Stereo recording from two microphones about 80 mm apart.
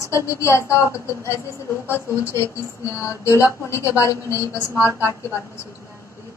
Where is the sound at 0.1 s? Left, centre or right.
Left.